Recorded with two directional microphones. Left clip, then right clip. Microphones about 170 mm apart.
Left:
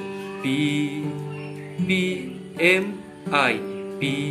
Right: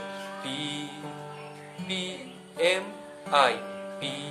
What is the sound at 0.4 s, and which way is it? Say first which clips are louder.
Music: left 12 dB; centre (ahead or behind).